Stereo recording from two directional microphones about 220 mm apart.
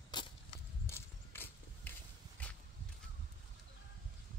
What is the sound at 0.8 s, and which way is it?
Horse, 10° left (ahead or behind).